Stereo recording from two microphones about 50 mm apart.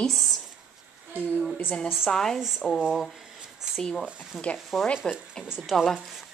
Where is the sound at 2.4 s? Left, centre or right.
Centre.